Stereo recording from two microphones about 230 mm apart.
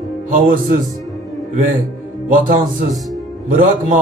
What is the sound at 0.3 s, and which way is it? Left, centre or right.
Speech, right.